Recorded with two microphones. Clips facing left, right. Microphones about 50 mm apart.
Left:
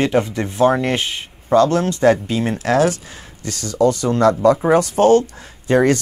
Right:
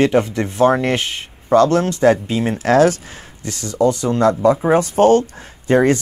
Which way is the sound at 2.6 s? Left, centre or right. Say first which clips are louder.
Right 4 dB; right.